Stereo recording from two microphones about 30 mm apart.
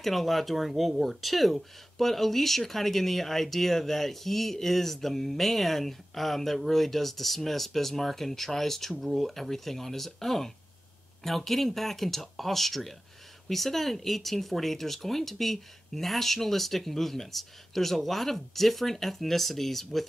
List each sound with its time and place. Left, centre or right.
0.0 s speech: centre